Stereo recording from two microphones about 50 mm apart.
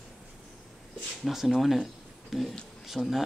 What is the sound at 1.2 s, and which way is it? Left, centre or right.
Speech, centre.